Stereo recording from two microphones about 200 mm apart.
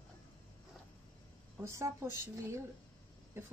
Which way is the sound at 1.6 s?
15° right (ahead or behind).